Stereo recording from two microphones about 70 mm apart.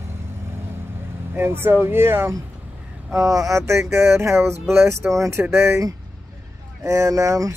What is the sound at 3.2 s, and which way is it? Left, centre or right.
Speech, right.